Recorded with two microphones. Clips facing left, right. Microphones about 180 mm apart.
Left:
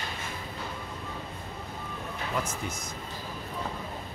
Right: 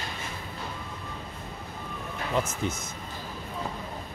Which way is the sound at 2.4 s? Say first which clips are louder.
Right 6 dB; 25° right (ahead or behind).